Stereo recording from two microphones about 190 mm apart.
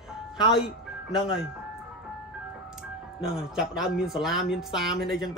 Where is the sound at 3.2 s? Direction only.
Centre (ahead or behind).